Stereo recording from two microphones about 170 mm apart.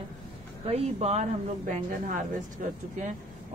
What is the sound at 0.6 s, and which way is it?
Speech, 40° right (ahead or behind).